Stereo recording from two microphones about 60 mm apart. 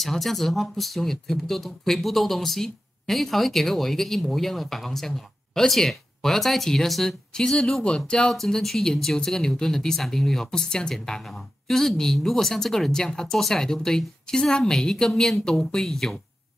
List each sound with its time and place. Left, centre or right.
0.0 s speech: centre